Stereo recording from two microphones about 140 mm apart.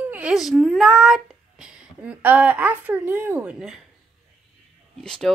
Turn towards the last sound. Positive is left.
turn(degrees=5)  # may be behind; listen again after turning